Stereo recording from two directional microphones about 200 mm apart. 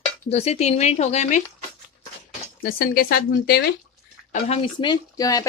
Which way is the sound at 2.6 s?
45° left (ahead or behind).